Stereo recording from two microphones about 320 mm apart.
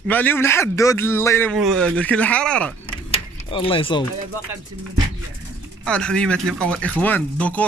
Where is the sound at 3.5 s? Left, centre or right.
Centre.